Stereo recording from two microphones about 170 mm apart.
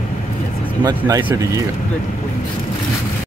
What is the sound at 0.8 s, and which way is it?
Speech, 20° right (ahead or behind).